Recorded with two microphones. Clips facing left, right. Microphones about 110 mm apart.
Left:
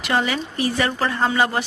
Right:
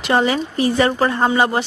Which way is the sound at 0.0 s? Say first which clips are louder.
Right 5 dB; 30° right (ahead or behind).